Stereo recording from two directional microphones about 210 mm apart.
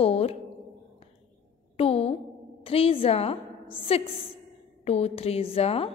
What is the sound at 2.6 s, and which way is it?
A woman's voice, 25° left (ahead or behind).